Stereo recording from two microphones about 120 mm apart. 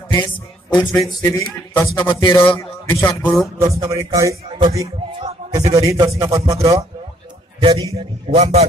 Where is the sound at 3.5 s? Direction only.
25° right (ahead or behind).